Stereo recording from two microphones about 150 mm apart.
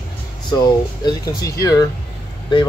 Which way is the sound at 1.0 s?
25° left (ahead or behind).